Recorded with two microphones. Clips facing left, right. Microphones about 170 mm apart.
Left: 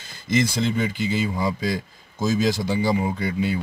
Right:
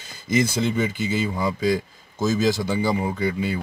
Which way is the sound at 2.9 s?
Centre (ahead or behind).